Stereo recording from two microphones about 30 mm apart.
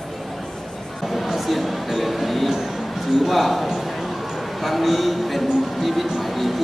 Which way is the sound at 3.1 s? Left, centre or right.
Centre.